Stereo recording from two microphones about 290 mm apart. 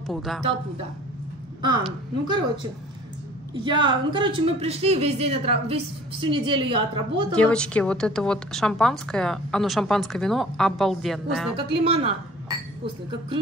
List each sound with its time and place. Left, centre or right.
0.0 s speech: centre
2.2 s a woman's voice: centre
3.6 s a woman's voice: centre
7.3 s a woman's voice: centre
11.5 s speech: centre